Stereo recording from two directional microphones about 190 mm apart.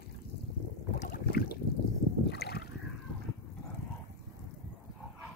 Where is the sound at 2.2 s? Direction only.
60° left (ahead or behind).